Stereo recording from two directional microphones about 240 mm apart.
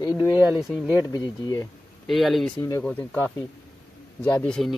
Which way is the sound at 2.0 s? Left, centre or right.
Centre.